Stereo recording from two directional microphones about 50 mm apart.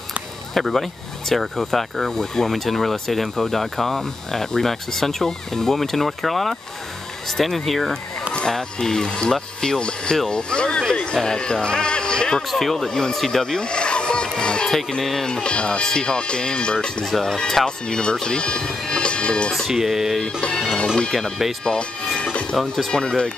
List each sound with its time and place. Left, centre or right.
0.6 s speech: centre
12.4 s speech: centre
14.9 s speech: centre
15.2 s speech: centre
17.0 s speech: centre
19.7 s speech: centre
20.2 s music: centre
20.6 s speech: centre